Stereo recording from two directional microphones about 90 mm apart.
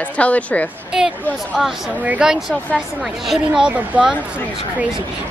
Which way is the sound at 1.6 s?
5° right (ahead or behind).